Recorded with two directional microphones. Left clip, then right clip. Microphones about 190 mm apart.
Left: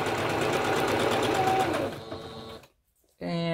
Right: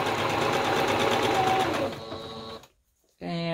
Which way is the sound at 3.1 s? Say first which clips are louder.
Left 1 dB; 35° left (ahead or behind).